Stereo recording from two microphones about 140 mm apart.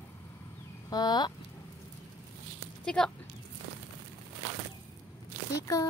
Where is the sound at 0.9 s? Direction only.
30° left (ahead or behind).